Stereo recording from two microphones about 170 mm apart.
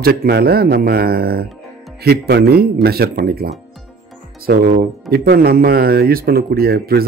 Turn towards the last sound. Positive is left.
turn(degrees=-65)  # may be behind; listen again after turning